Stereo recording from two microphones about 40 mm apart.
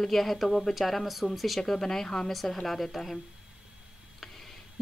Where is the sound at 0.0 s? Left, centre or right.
Centre.